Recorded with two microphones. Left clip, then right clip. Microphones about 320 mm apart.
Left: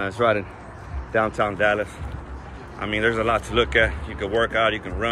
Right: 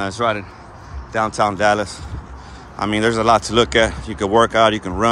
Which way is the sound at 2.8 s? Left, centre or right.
Centre.